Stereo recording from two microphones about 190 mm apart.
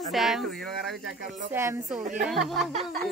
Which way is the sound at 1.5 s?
10° right (ahead or behind).